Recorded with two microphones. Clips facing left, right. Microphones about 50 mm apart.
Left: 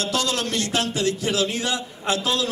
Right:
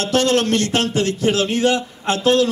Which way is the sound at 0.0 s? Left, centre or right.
Right.